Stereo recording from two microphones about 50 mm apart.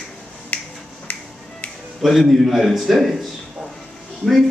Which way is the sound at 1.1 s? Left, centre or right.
Left.